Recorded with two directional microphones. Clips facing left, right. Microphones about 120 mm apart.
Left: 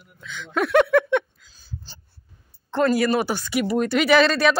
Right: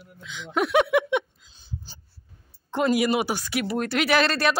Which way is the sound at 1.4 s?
25° right (ahead or behind).